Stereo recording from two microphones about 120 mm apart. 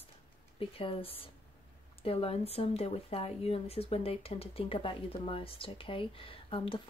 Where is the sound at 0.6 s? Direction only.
50° left (ahead or behind).